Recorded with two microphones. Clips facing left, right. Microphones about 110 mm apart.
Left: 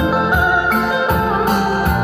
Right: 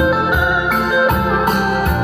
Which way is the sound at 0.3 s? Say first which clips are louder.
Left 1 dB; 30° left (ahead or behind).